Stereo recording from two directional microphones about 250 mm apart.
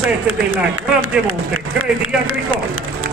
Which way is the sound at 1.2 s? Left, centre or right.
Right.